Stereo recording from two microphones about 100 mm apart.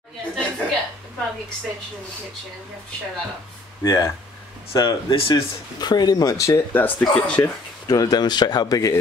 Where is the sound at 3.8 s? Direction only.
35° left (ahead or behind).